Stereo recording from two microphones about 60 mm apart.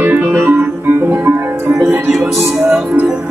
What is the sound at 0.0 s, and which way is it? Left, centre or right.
Music, right.